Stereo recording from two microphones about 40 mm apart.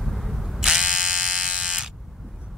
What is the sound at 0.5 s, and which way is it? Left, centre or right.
Electric shaver, centre.